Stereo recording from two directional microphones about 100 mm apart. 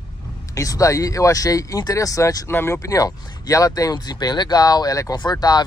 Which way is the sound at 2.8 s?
35° left (ahead or behind).